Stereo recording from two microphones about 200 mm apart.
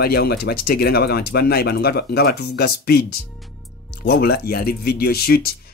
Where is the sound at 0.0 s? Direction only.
50° left (ahead or behind).